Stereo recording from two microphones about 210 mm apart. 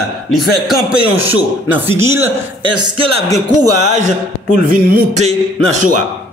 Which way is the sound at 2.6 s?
20° right (ahead or behind).